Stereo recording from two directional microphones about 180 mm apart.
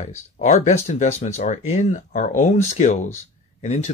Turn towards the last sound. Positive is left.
turn(degrees=40)  # may be behind; listen again after turning